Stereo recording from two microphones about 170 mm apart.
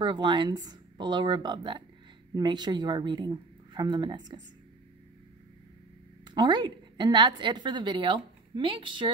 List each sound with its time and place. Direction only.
0.0 s a woman's voice: 25° right (ahead or behind)
6.3 s a woman's voice: 25° right (ahead or behind)